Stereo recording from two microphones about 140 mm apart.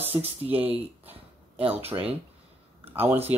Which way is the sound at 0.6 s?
10° right (ahead or behind).